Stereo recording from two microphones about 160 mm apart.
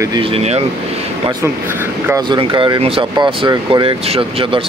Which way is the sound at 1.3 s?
15° right (ahead or behind).